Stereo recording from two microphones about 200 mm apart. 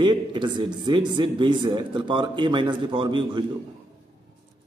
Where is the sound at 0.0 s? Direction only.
25° right (ahead or behind).